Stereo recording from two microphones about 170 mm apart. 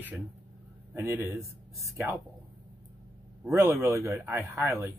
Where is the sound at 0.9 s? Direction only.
15° right (ahead or behind).